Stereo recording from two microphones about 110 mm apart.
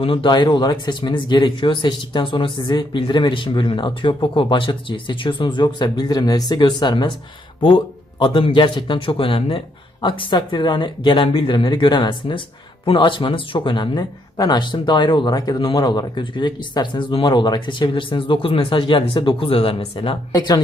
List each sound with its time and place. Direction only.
0.0 s speech: 50° left (ahead or behind)
20.3 s speech: 35° left (ahead or behind)